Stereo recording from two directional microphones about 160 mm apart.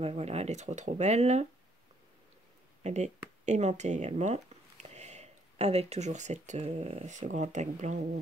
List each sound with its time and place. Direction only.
0.0 s speech: 40° right (ahead or behind)
2.8 s speech: 45° right (ahead or behind)